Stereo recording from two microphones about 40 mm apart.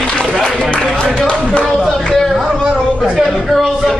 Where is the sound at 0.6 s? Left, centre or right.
Left.